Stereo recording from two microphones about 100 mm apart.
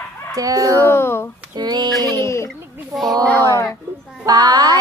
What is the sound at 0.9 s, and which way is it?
Speech, 25° left (ahead or behind).